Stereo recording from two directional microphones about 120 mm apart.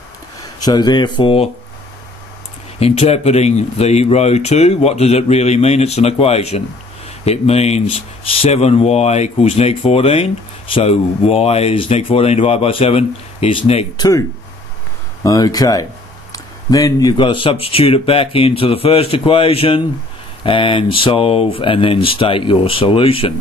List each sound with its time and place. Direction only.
0.4 s speech: 35° left (ahead or behind); by 1.5 s 50° left (ahead or behind)
2.8 s speech: 60° left (ahead or behind)
13.9 s speech: 30° left (ahead or behind)
15.2 s speech: 30° left (ahead or behind); by 23.3 s 50° left (ahead or behind)